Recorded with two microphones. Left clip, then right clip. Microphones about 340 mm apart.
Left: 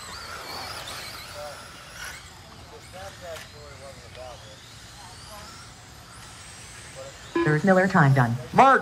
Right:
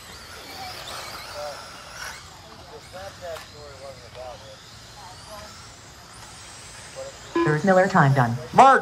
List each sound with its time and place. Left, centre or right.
0.1 s vehicle: centre
7.3 s speech: centre